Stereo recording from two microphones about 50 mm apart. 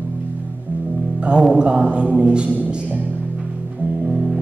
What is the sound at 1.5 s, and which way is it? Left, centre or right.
A man's voice, right.